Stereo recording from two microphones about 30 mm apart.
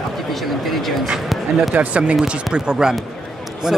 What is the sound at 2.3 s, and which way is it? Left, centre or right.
Speech, right.